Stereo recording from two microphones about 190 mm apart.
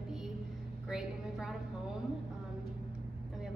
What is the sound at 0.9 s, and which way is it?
Speech, centre (ahead or behind).